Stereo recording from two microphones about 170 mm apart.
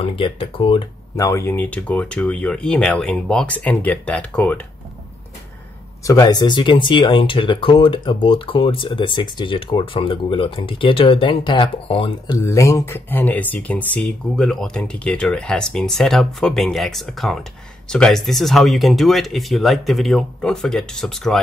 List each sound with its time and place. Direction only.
0.0 s speech: 30° left (ahead or behind)
1.1 s speech: 15° left (ahead or behind)
6.0 s speech: 20° left (ahead or behind)
12.4 s speech: 20° left (ahead or behind); by 21.4 s centre (ahead or behind)